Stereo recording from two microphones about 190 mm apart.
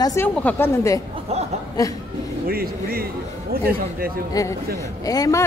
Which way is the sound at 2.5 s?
50° right (ahead or behind).